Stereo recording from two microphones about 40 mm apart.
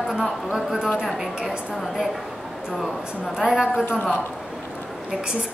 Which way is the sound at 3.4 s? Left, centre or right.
Centre.